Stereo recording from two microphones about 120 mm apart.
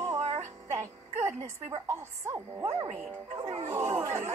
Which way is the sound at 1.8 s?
25° right (ahead or behind).